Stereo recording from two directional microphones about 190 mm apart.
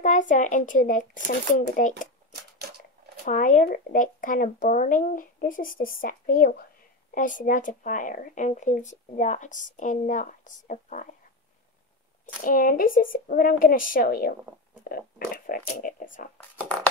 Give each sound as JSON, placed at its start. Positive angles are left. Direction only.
{"t": 0.0, "sound": "speech", "side_deg": 40}
{"t": 2.6, "sound": "a sound", "side_deg": -55}
{"t": 3.3, "sound": "speech", "side_deg": 40}
{"t": 12.4, "sound": "speech", "side_deg": 50}